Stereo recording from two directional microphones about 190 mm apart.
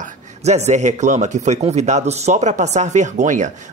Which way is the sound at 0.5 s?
35° right (ahead or behind).